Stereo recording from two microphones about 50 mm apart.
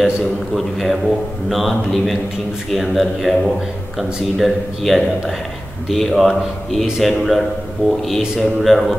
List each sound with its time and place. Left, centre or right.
0.2 s a man's voice: centre
7.8 s speech: left
8.4 s a man's voice: centre